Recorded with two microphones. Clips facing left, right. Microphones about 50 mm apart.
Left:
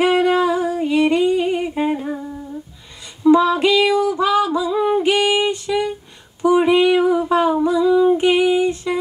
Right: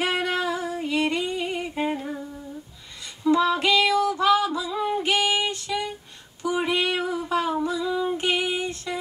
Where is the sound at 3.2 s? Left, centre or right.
Centre.